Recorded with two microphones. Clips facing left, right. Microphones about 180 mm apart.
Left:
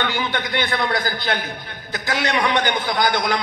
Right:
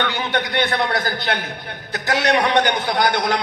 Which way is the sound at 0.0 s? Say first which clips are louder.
Right 1 dB; 65° right (ahead or behind).